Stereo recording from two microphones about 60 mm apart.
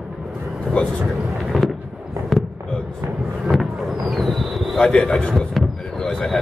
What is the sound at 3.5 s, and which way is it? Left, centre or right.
Vehicle, centre.